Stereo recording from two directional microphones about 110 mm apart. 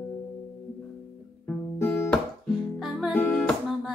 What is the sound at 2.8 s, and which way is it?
Music, 5° right (ahead or behind).